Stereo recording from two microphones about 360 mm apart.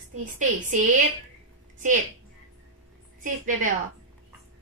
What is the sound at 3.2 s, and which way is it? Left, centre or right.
Speech, right.